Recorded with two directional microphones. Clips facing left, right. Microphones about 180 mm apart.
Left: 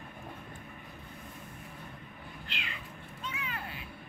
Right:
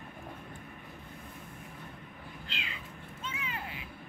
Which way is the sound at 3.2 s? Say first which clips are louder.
Even; 20° right (ahead or behind).